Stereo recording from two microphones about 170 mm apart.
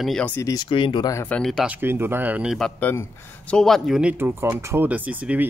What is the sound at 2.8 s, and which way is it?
Speech, 10° left (ahead or behind).